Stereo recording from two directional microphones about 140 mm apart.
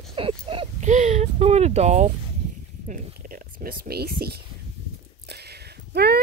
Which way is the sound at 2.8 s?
80° right.